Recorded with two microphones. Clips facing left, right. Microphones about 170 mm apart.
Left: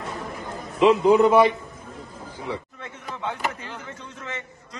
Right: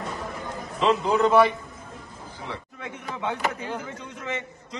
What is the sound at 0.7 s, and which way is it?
Speech, 15° left (ahead or behind).